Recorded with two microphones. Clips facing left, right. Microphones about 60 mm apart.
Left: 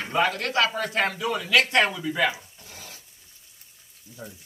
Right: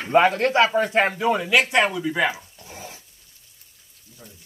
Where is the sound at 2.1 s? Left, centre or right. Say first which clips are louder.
Right 2 dB; right.